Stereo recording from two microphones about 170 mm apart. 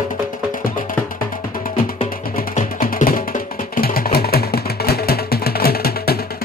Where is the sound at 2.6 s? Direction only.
55° left (ahead or behind).